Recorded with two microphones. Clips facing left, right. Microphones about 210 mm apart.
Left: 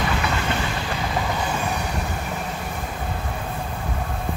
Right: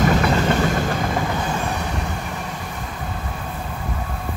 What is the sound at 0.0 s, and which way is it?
Train, 45° right (ahead or behind).